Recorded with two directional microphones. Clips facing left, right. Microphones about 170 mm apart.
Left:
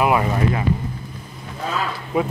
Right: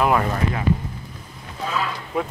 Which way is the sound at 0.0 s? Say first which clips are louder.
Left 1 dB; 5° left (ahead or behind).